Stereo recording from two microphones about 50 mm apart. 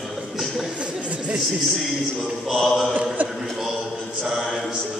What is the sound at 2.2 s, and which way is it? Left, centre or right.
Music, centre.